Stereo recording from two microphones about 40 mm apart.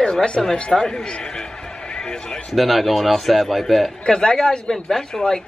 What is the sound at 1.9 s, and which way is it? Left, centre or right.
Basketball bounce, centre.